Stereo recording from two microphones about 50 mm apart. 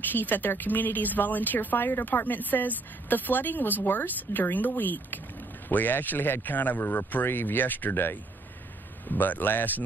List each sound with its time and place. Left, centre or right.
0.1 s a woman's voice: left